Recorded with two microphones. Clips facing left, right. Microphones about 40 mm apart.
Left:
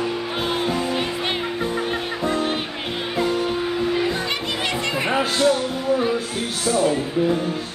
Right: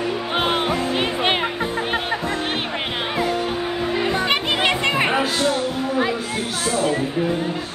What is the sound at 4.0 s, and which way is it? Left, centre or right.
Music, right.